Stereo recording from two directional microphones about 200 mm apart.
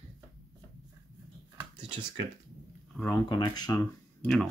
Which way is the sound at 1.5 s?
20° right (ahead or behind).